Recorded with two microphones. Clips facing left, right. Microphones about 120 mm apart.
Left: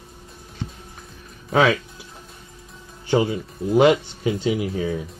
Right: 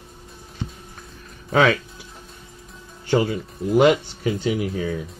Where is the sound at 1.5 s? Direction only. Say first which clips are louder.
Even; 10° left (ahead or behind).